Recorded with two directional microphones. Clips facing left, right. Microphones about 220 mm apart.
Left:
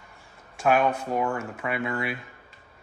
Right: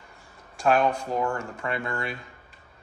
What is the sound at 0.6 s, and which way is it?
Speech, 5° left (ahead or behind).